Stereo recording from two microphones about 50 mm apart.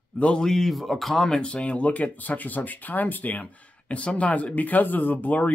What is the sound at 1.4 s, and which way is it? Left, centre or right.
Speech, left.